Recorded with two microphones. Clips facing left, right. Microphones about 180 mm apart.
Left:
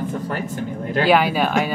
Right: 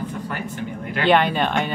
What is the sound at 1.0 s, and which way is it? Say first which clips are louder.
Speech: even; 5° left (ahead or behind).